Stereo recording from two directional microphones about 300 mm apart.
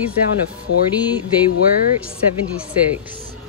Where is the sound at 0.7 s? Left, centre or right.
Left.